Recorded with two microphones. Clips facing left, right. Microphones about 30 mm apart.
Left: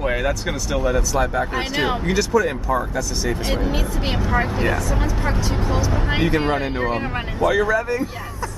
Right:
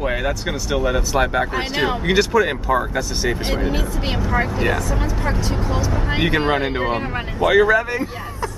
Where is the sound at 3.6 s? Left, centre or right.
Centre.